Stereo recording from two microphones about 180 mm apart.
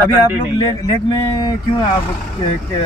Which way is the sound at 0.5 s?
20° left (ahead or behind).